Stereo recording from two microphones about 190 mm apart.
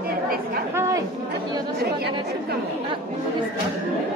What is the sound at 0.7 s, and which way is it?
Chatter, 15° right (ahead or behind).